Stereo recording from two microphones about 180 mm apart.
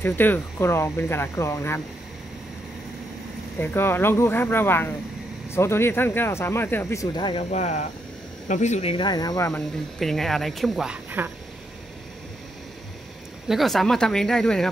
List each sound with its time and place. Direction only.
0.0 s speech: 10° left (ahead or behind)
3.5 s speech: 10° left (ahead or behind)
7.5 s speech: 40° left (ahead or behind)
8.9 s speech: 25° left (ahead or behind)
9.5 s speech: centre (ahead or behind)
13.5 s speech: centre (ahead or behind)